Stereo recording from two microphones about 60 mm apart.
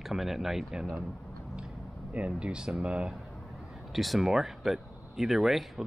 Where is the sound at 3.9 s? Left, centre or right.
Centre.